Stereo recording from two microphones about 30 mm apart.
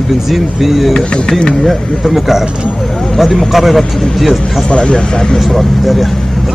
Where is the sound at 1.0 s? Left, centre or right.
Left.